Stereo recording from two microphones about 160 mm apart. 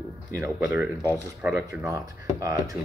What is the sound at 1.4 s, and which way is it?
Speech, 15° right (ahead or behind).